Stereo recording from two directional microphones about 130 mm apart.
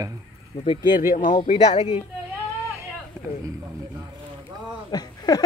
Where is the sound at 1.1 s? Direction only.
90° left.